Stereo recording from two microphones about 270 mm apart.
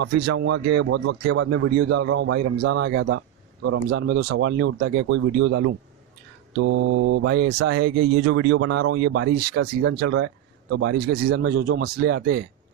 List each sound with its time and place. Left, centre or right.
0.0 s a man's voice: right
6.7 s mantra: right
7.7 s a man's voice: right
8.3 s speech: right
8.5 s a man's voice: right
10.0 s mantra: right
10.8 s a man's voice: right